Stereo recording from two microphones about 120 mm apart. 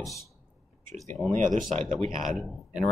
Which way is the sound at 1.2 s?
25° right (ahead or behind).